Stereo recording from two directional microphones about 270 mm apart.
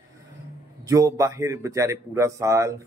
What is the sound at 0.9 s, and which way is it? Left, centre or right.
Speech, centre.